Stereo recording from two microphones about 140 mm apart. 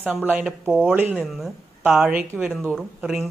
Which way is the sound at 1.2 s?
Centre (ahead or behind).